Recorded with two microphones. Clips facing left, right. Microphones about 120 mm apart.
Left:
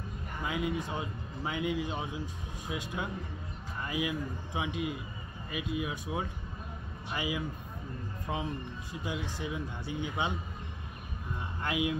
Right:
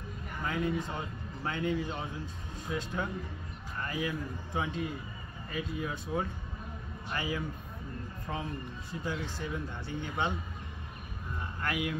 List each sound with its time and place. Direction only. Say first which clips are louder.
0.4 s speech: right 1 dB; 10° left (ahead or behind)
3.8 s a sound: left 1 dB; 15° left (ahead or behind)
4.6 s speech: even; 15° left (ahead or behind)
9.0 s speech: even; 15° left (ahead or behind)
11.6 s speech: left 2 dB; 20° left (ahead or behind)